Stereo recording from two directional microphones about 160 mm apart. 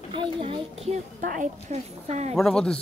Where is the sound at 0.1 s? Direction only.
35° right (ahead or behind).